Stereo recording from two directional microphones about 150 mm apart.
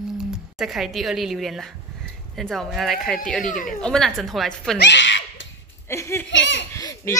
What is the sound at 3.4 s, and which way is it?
Speech, 60° left (ahead or behind).